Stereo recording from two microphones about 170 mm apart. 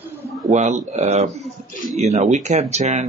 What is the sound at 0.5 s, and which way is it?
Speech, 45° right (ahead or behind).